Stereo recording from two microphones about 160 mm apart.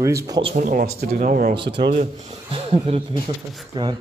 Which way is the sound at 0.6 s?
60° right (ahead or behind).